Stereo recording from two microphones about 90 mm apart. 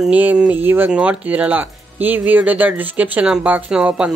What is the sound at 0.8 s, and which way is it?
Speech, 15° right (ahead or behind).